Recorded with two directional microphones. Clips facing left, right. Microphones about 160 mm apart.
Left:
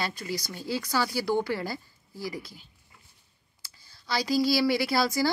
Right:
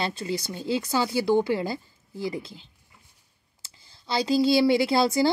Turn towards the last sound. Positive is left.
turn(degrees=-25)  # may be behind; listen again after turning